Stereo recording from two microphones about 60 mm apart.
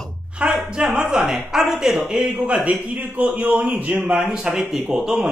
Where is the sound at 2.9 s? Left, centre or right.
Right.